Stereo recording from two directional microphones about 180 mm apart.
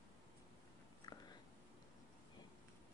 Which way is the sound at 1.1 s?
20° left (ahead or behind).